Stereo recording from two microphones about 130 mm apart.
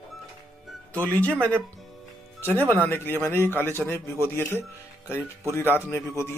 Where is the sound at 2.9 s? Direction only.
15° left (ahead or behind).